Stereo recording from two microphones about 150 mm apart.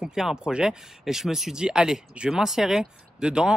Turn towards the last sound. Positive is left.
turn(degrees=-5)  # may be behind; listen again after turning